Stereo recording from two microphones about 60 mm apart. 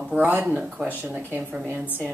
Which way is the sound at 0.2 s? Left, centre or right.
Right.